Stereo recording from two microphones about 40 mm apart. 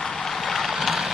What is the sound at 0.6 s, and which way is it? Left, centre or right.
Boat, centre.